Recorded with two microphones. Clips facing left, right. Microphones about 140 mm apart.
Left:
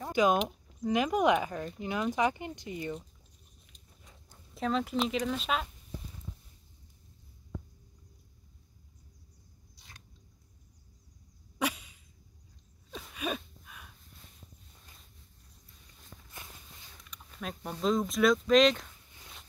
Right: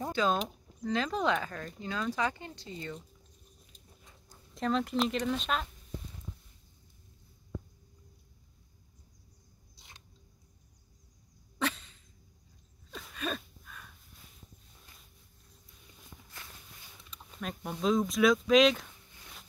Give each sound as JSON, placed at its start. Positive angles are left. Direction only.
{"t": 0.1, "sound": "speech", "side_deg": 15}
{"t": 4.6, "sound": "speech", "side_deg": 0}
{"t": 9.8, "sound": "biting", "side_deg": -25}
{"t": 11.5, "sound": "a sound", "side_deg": 10}
{"t": 17.6, "sound": "speech", "side_deg": -5}